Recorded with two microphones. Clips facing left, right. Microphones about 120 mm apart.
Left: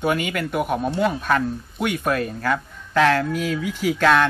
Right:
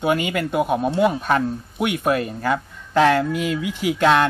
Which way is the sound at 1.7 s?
15° right (ahead or behind).